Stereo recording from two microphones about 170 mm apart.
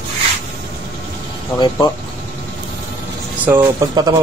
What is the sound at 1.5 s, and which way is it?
Speech, 10° left (ahead or behind).